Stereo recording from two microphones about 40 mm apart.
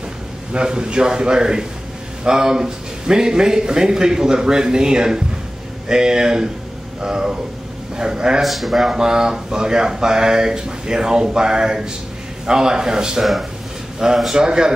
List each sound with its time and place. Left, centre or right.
0.5 s a man's voice: right
8.4 s speech: centre
8.8 s speech: centre
13.2 s speech: centre
13.9 s a man's voice: centre